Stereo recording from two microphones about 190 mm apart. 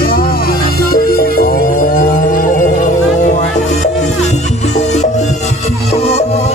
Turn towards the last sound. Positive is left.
turn(degrees=35)  # may be behind; listen again after turning